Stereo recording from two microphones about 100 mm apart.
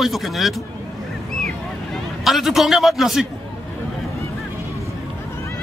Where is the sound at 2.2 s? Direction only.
Centre (ahead or behind).